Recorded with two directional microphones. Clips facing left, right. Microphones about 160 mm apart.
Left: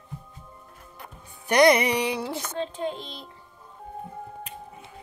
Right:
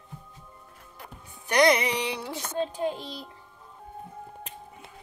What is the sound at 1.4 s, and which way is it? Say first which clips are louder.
Music: left 3 dB; 60° left (ahead or behind).